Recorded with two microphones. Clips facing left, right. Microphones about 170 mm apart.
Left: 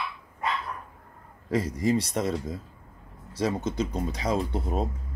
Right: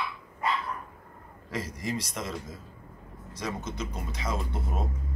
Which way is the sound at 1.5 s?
35° left (ahead or behind).